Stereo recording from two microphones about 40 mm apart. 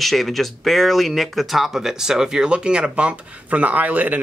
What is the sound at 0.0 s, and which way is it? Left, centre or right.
Speech, centre.